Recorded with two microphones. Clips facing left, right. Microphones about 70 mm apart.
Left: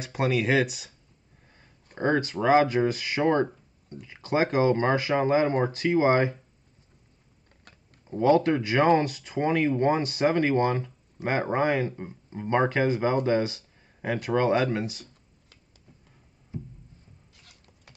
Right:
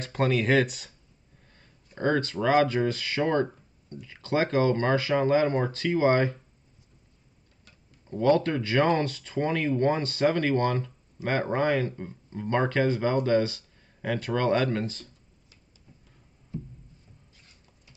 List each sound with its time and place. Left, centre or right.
0.0 s speech: centre
2.0 s speech: centre
7.7 s tick-tock: left
8.1 s speech: centre
17.3 s a sound: left